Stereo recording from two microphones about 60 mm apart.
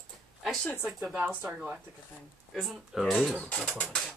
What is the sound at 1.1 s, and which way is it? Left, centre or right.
Speech, right.